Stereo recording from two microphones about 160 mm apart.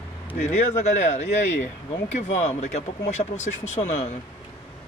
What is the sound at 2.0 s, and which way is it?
Speech, 45° left (ahead or behind).